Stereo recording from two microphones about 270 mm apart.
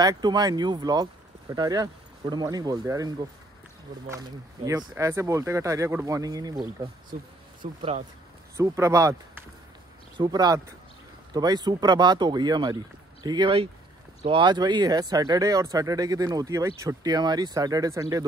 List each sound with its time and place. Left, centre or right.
0.0 s speech: centre
8.5 s speech: centre